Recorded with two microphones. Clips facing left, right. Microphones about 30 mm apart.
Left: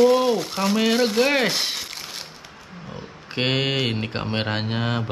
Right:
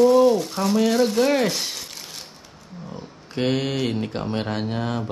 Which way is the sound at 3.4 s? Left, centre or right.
Left.